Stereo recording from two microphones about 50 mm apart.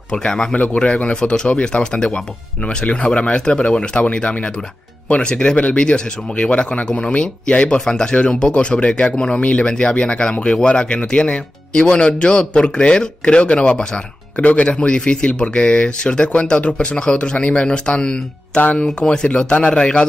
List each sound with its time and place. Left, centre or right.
0.1 s speech: centre
18.6 s speech: left